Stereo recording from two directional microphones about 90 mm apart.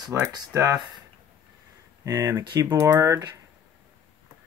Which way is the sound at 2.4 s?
50° right (ahead or behind).